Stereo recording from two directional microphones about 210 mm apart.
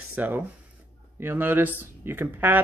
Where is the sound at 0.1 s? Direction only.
10° right (ahead or behind).